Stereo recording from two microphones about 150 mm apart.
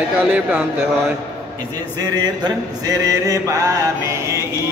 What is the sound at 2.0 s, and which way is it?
Mantra, 30° right (ahead or behind).